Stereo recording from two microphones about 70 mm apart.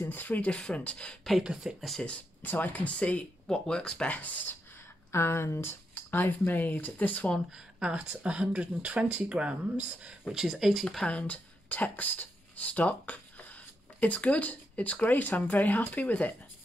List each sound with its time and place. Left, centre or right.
0.1 s speech: left
0.5 s speech: centre
1.4 s speech: centre
1.9 s speech: centre
2.1 s speech: left
5.1 s speech: left
7.3 s speech: centre
11.1 s speech: centre